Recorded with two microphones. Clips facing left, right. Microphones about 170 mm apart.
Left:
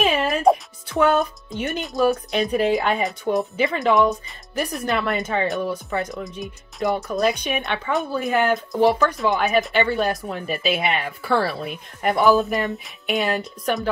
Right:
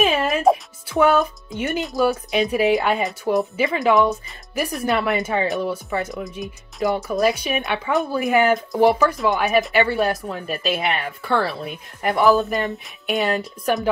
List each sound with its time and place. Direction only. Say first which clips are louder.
0.0 s music: right 1 dB; centre (ahead or behind)
1.5 s speech: right 2 dB; centre (ahead or behind)